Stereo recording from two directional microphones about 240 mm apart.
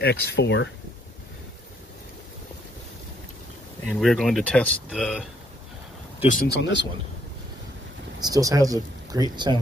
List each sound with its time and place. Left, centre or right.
0.0 s speech: left
3.8 s speech: centre
6.2 s speech: left
8.2 s speech: centre